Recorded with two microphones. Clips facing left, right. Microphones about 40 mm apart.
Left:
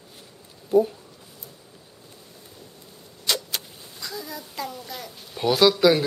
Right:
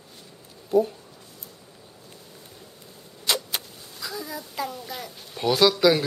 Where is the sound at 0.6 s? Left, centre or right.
Centre.